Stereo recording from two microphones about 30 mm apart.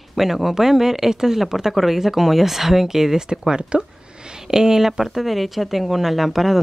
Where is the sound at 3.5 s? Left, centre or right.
Right; by 6.6 s centre.